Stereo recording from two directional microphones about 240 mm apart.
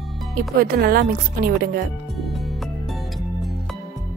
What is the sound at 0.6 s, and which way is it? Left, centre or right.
Speech, right.